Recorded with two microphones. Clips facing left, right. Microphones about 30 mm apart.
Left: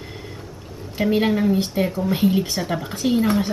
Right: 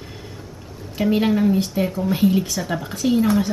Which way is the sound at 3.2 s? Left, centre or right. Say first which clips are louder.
Right 1 dB; left.